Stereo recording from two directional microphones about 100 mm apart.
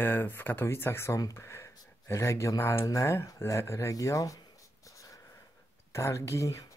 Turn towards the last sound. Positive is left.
turn(degrees=30)  # may be behind; listen again after turning